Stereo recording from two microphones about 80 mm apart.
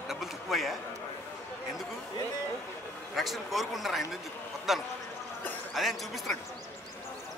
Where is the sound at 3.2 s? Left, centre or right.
Centre.